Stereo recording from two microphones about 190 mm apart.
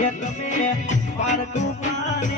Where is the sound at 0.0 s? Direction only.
40° left (ahead or behind).